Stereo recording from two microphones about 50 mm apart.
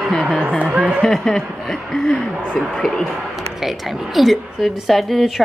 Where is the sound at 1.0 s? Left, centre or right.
Centre.